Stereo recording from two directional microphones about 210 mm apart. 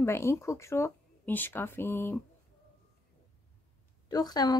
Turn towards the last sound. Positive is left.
turn(degrees=20)  # may be behind; listen again after turning